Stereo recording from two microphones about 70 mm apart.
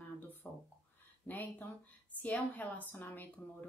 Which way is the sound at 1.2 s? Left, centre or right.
Left.